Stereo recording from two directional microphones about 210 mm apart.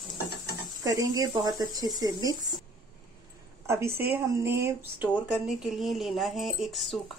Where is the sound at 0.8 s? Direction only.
15° right (ahead or behind).